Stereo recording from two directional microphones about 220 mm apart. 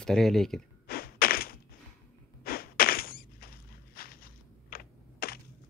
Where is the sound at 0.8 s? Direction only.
45° left (ahead or behind).